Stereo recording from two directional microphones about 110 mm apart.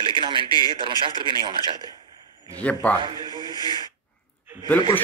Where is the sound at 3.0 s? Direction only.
50° right (ahead or behind).